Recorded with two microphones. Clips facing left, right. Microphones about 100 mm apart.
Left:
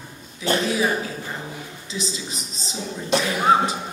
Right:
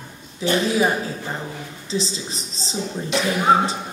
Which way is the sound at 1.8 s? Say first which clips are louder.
Right 5 dB; 30° right (ahead or behind).